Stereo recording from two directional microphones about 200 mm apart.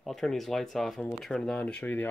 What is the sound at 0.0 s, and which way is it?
Speech, centre (ahead or behind).